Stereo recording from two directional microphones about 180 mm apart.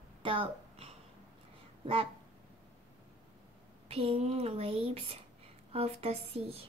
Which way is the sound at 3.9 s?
30° right (ahead or behind).